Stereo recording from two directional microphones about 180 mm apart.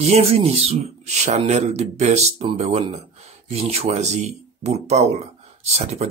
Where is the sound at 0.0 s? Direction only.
35° right (ahead or behind).